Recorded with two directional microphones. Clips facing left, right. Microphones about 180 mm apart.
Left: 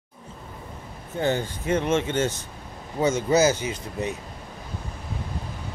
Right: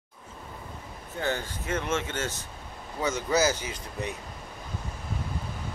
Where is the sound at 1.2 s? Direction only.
20° left (ahead or behind).